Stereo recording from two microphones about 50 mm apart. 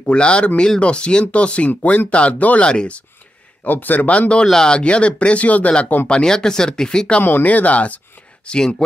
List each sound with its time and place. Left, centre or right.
0.0 s speech: left
2.6 s speech: centre
3.6 s speech: left
4.5 s speech: centre
7.2 s speech: left
8.5 s speech: centre